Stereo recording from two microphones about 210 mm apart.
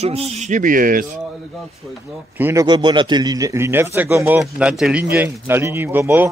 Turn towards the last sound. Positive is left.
turn(degrees=-10)  # may be behind; listen again after turning